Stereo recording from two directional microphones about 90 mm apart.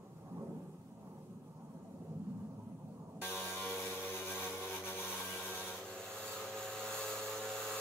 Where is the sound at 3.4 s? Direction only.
25° left (ahead or behind).